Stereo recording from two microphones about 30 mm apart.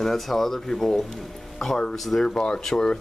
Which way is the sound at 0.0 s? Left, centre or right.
Centre.